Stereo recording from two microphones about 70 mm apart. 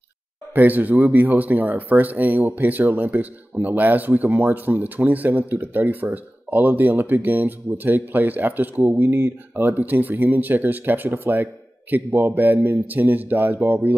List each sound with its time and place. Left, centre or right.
0.6 s speech: right